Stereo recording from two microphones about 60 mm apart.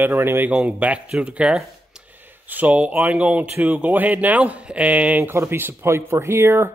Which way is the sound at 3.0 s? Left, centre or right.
Right.